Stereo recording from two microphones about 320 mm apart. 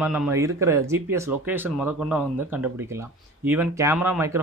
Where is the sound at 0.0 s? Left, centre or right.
Centre.